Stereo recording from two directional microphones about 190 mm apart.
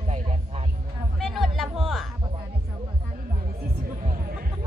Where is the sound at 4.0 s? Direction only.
50° right (ahead or behind).